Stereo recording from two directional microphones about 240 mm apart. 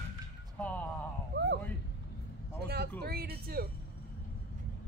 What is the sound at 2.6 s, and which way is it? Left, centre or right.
Speech, right.